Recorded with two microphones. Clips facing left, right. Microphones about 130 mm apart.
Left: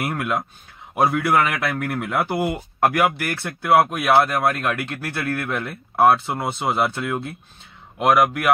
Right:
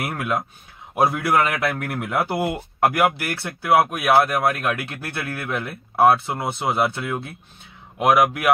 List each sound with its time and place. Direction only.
0.0 s a man's voice: 5° right (ahead or behind)